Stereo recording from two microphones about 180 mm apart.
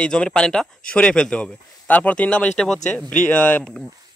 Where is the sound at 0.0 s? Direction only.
5° left (ahead or behind).